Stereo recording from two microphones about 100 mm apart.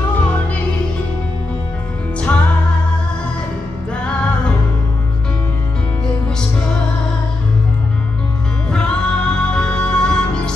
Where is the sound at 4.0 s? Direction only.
10° left (ahead or behind).